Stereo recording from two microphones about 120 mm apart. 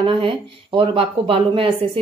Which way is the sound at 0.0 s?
45° right (ahead or behind).